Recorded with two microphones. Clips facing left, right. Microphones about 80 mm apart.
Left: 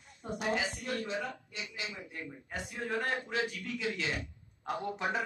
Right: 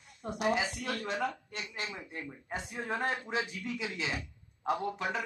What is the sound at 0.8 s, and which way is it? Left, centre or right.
A woman's voice, right.